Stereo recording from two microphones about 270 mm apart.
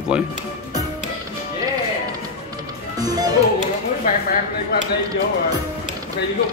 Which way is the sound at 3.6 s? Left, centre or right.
Left.